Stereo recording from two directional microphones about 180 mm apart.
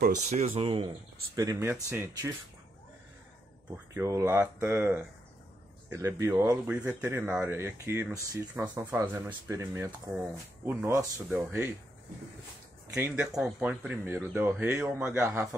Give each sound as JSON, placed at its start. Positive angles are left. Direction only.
{"t": 0.0, "sound": "speech", "side_deg": -40}
{"t": 1.3, "sound": "speech", "side_deg": -20}
{"t": 3.7, "sound": "speech", "side_deg": -15}
{"t": 11.2, "sound": "speech", "side_deg": -5}
{"t": 12.9, "sound": "speech", "side_deg": -10}